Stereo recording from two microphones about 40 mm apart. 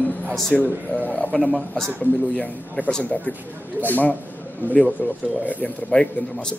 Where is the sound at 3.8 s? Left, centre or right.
Left.